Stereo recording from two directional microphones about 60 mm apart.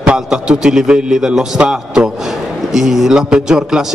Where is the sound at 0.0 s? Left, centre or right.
Centre.